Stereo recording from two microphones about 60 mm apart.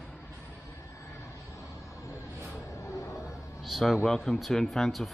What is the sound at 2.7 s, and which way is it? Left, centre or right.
Music, left.